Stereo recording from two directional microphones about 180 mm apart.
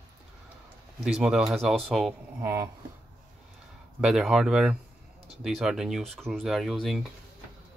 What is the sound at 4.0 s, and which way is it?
Speech, 5° right (ahead or behind).